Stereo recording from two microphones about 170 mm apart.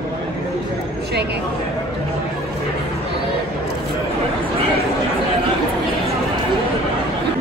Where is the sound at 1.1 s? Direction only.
75° right (ahead or behind).